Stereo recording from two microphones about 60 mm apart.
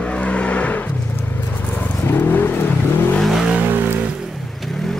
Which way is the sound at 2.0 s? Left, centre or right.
Left.